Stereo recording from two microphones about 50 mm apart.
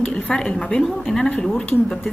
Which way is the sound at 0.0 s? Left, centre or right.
Left.